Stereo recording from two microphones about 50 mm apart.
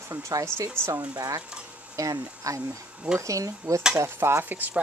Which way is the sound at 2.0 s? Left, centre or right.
Right.